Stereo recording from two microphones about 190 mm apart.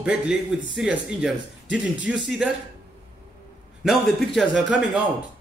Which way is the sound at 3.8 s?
Centre (ahead or behind).